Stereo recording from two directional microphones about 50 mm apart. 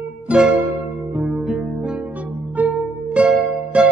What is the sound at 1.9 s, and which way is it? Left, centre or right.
Music, right.